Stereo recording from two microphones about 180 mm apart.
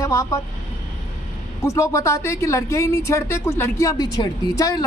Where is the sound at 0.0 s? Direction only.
15° left (ahead or behind).